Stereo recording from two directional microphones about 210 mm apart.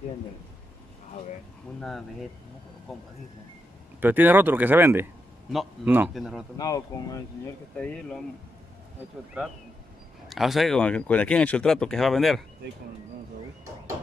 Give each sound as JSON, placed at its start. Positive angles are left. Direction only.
{"t": 1.8, "sound": "speech", "side_deg": 0}
{"t": 6.6, "sound": "speech", "side_deg": 15}
{"t": 7.7, "sound": "speech", "side_deg": 5}
{"t": 10.3, "sound": "speech", "side_deg": 0}